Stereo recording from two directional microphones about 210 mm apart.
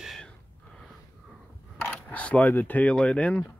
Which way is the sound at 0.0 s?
Centre (ahead or behind).